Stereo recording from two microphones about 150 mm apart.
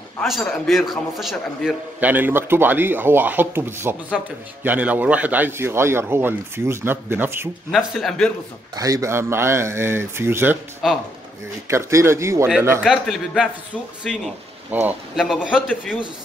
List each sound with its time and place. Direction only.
0.2 s a man's voice: centre (ahead or behind)
4.2 s speech: centre (ahead or behind)
4.6 s a man's voice: 10° right (ahead or behind)
7.7 s speech: centre (ahead or behind)
8.7 s a man's voice: 25° right (ahead or behind)
10.8 s speech: centre (ahead or behind)
11.6 s speech: 20° right (ahead or behind)
12.8 s speech: 5° right (ahead or behind)